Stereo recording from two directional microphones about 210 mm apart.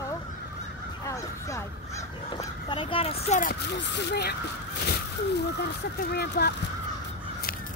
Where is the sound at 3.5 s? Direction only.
50° left (ahead or behind).